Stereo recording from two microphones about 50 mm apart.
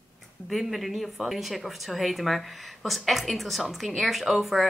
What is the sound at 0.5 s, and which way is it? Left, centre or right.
Speech, centre.